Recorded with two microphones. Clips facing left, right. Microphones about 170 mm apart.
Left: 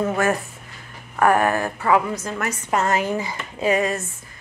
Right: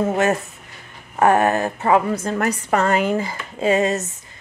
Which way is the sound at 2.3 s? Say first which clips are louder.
Right 3 dB; 35° right (ahead or behind).